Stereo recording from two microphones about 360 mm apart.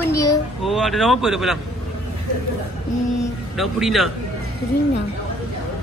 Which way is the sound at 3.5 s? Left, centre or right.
Centre.